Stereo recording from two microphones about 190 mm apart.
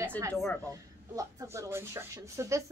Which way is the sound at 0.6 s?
15° right (ahead or behind).